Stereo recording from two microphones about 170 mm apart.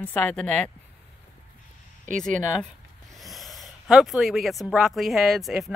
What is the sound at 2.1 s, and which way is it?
Speech, 50° right (ahead or behind).